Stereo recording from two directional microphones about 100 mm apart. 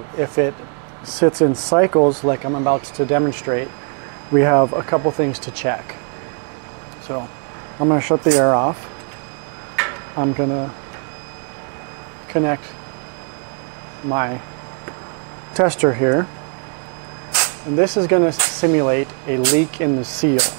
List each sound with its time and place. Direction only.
1.2 s speech: 30° right (ahead or behind)
7.1 s speech: 20° right (ahead or behind)
9.8 s a sound: 25° right (ahead or behind)
12.3 s speech: 25° right (ahead or behind)
14.0 s speech: 25° right (ahead or behind)
15.5 s speech: 20° right (ahead or behind)
17.3 s a sound: 15° right (ahead or behind)
17.9 s speech: 25° right (ahead or behind)